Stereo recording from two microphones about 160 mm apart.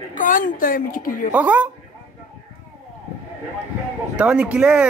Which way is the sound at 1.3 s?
10° right (ahead or behind).